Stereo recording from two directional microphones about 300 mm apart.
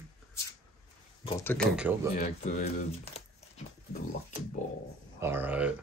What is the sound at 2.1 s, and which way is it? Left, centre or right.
Speech, left.